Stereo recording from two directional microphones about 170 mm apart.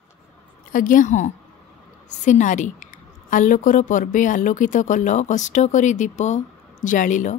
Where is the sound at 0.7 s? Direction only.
50° left (ahead or behind).